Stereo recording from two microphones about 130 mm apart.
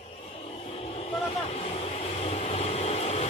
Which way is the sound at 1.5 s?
55° left (ahead or behind).